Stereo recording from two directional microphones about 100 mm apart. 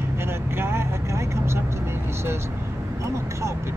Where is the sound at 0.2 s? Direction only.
25° right (ahead or behind).